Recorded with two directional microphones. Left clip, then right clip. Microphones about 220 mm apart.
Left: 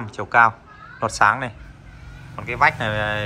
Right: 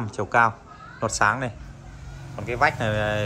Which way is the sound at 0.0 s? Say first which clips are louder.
Left 4 dB; 10° right (ahead or behind).